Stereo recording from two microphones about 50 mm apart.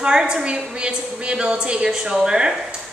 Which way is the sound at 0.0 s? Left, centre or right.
Centre.